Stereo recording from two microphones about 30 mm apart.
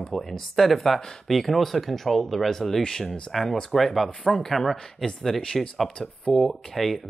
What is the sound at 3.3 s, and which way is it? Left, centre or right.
Speech, centre.